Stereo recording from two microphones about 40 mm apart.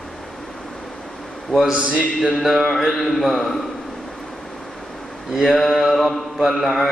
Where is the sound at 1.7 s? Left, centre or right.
Right.